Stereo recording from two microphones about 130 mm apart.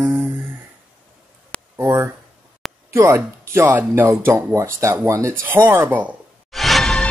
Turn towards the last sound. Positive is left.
turn(degrees=0)  # may be behind; listen again after turning